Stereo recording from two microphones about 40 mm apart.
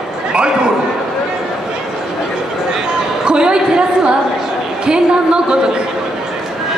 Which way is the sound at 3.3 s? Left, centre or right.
Right.